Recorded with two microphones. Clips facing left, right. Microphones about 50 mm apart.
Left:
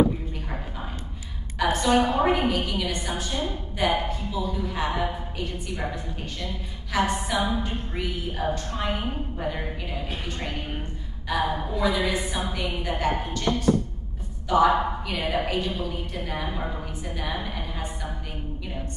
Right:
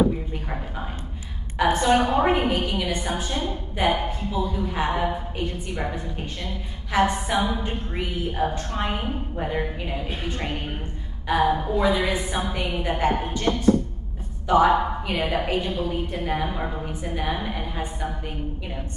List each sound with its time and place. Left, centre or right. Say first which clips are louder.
1.6 s a woman's voice: right 2 dB; right
5.8 s a woman's voice: right 3 dB; right
16.4 s a woman's voice: right 3 dB; centre